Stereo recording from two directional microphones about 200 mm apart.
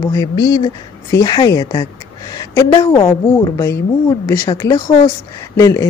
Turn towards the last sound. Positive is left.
turn(degrees=15)  # may be behind; listen again after turning